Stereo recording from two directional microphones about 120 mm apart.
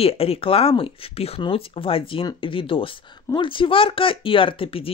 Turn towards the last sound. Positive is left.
turn(degrees=50)  # may be behind; listen again after turning